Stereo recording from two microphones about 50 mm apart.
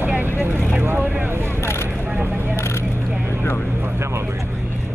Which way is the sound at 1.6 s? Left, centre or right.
Left.